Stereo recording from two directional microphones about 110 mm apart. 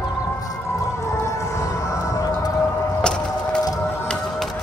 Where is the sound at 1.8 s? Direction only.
30° left (ahead or behind).